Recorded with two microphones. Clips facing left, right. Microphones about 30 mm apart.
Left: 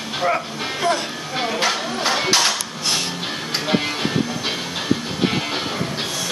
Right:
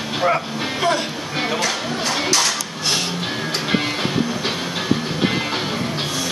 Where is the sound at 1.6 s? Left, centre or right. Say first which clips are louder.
Left 1 dB; left.